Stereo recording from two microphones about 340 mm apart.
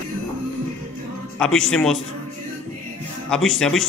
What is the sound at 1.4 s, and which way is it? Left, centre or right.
Speech, centre.